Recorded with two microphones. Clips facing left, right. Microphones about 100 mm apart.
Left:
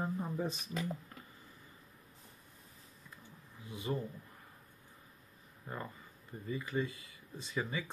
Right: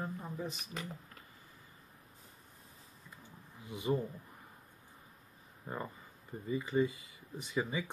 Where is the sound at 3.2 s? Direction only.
20° right (ahead or behind).